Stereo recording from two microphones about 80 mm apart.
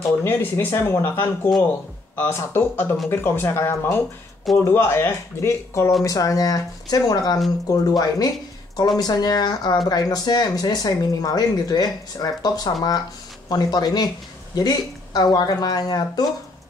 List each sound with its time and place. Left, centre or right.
0.2 s speech: left
6.0 s speech: left